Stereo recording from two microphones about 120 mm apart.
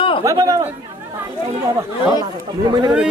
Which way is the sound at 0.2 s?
30° right (ahead or behind).